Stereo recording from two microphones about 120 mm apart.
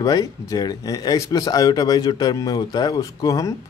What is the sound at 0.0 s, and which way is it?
Speech, 30° left (ahead or behind).